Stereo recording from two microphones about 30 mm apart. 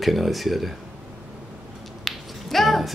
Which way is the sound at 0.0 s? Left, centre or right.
Centre.